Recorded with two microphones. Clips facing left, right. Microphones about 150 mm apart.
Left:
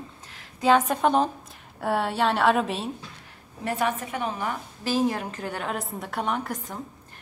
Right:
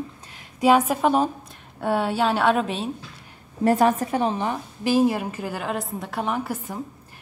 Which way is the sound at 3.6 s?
40° right (ahead or behind).